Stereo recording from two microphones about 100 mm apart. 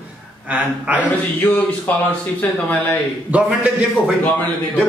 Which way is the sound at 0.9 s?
15° left (ahead or behind).